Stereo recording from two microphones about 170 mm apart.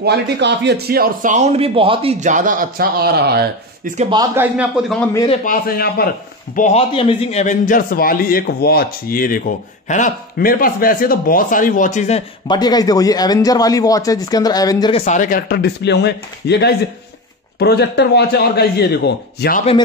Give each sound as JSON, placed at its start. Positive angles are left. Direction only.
{"t": 0.0, "sound": "speech", "side_deg": -85}
{"t": 4.1, "sound": "a man's voice", "side_deg": -20}
{"t": 5.4, "sound": "a man's voice", "side_deg": 60}
{"t": 6.5, "sound": "a man's voice", "side_deg": 45}
{"t": 9.8, "sound": "speech", "side_deg": 45}
{"t": 10.3, "sound": "a man's voice", "side_deg": 60}
{"t": 12.4, "sound": "a man's voice", "side_deg": 25}
{"t": 14.9, "sound": "a man's voice", "side_deg": 40}